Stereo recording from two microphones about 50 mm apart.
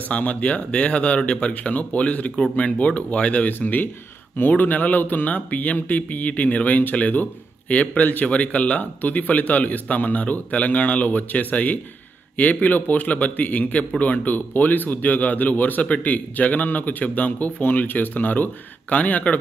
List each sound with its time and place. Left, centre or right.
0.1 s speech: left
3.5 s speech: left